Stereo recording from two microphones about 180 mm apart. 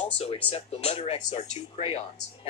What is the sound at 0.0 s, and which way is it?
Speech, 35° left (ahead or behind).